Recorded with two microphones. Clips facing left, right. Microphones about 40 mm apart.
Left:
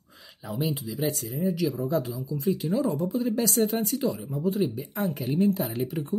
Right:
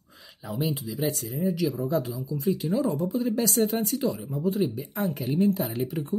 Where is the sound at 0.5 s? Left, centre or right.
Centre.